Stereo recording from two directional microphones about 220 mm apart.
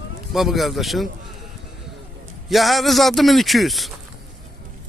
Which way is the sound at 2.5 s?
Centre (ahead or behind).